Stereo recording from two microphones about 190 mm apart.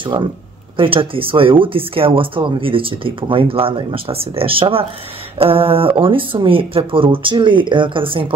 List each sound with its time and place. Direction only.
0.7 s speech: 30° right (ahead or behind)